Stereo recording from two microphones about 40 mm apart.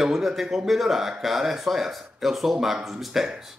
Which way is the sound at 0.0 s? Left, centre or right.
Centre.